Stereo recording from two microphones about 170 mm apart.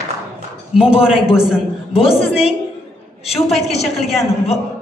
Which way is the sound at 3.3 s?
Centre (ahead or behind).